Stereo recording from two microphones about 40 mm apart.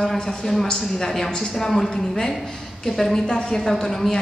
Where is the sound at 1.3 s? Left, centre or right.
Left.